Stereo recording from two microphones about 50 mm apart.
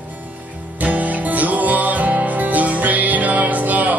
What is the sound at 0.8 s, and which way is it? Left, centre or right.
Music, right.